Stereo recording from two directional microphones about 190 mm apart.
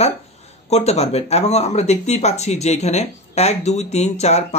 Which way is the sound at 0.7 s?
35° left (ahead or behind).